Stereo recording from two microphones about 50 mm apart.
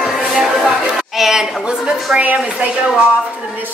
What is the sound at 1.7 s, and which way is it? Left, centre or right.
Speech, centre.